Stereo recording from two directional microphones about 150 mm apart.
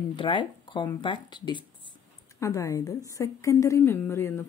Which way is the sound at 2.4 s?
20° left (ahead or behind).